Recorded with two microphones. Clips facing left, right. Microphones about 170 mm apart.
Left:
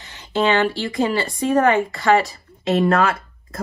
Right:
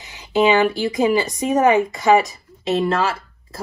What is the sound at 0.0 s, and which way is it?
Speech, 15° right (ahead or behind).